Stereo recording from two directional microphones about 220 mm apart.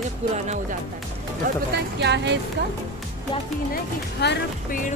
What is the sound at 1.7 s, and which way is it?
Speech, 50° right (ahead or behind).